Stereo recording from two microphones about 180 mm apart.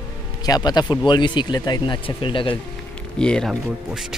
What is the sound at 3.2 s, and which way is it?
Speech, 5° left (ahead or behind).